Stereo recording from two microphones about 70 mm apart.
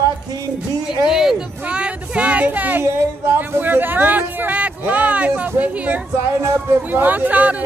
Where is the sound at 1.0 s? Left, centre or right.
Centre; by 2.8 s right.